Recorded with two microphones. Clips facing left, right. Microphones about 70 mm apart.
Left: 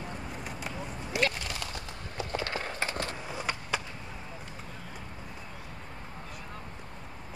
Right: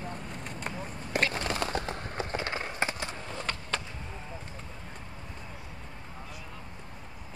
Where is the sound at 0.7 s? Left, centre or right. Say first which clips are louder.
Even; right.